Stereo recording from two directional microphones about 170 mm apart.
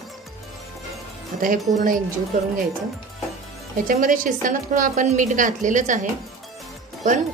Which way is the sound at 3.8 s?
55° right (ahead or behind).